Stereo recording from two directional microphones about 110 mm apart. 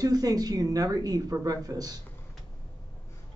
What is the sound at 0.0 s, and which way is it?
A woman's voice, 35° right (ahead or behind).